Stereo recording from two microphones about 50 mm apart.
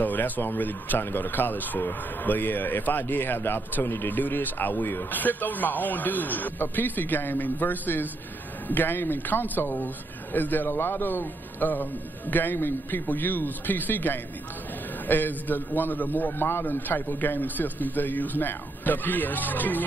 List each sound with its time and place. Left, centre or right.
0.0 s speech: left
4.1 s a man's voice: left